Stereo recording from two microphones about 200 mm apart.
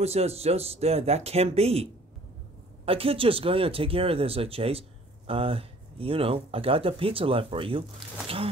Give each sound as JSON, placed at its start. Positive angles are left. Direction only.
{"t": 0.0, "sound": "speech", "side_deg": -30}